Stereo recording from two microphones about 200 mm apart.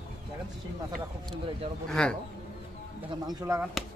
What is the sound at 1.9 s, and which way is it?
Speech, 5° left (ahead or behind).